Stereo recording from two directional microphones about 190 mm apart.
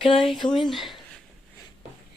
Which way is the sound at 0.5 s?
Centre (ahead or behind).